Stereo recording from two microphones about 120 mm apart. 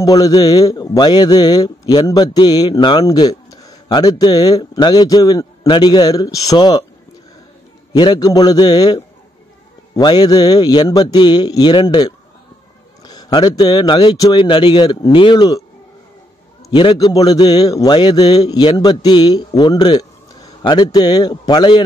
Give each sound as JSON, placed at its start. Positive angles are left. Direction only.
{"t": 0.0, "sound": "a man's voice", "side_deg": 30}
{"t": 3.1, "sound": "a man's voice", "side_deg": 30}
{"t": 7.9, "sound": "a man's voice", "side_deg": 35}
{"t": 14.3, "sound": "a man's voice", "side_deg": 45}
{"t": 16.7, "sound": "a man's voice", "side_deg": 45}
{"t": 17.1, "sound": "a man's voice", "side_deg": 35}